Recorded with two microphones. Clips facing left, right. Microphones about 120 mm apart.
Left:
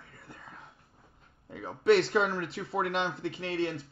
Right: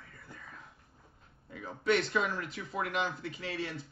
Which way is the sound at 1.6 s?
30° left (ahead or behind).